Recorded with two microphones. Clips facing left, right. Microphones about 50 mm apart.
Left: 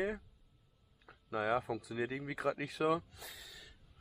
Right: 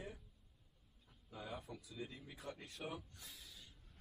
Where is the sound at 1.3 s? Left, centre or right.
Left.